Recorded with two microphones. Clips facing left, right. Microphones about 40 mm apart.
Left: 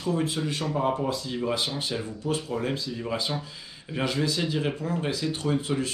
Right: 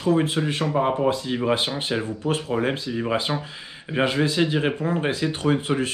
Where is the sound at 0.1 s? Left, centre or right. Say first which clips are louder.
Right 6 dB; right.